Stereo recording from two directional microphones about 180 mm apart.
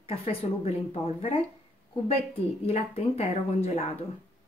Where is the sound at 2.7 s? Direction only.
35° left (ahead or behind).